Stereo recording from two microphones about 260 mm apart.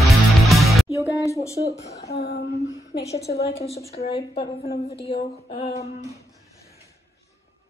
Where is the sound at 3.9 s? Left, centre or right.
Left.